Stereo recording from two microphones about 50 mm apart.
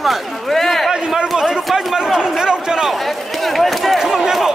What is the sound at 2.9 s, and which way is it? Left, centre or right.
Speech, centre.